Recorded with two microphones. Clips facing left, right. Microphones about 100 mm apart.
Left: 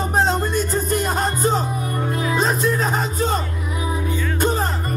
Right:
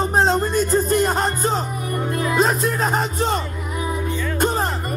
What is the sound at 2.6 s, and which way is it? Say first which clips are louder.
Music: even; 40° right (ahead or behind).